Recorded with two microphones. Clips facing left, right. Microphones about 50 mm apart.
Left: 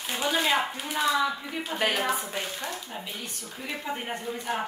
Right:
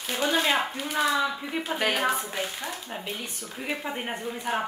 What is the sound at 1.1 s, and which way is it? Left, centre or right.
Speech, centre.